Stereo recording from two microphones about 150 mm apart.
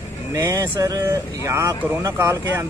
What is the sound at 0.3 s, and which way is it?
Speech, 20° right (ahead or behind).